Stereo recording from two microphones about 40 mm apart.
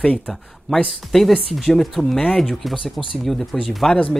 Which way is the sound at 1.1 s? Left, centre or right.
Centre.